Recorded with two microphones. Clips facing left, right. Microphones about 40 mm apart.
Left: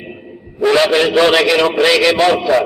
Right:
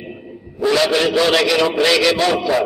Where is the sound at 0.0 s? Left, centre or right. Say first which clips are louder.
Left 1 dB; left.